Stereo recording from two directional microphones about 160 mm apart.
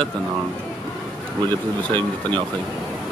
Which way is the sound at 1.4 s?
30° right (ahead or behind).